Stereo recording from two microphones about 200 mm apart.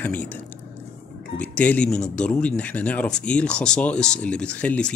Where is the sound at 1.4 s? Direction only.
5° left (ahead or behind).